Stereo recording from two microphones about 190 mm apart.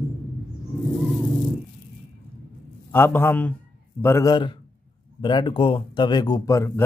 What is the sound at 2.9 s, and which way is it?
A man's voice, 10° left (ahead or behind).